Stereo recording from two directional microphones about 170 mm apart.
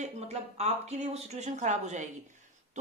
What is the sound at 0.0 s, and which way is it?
A woman's voice, 40° right (ahead or behind).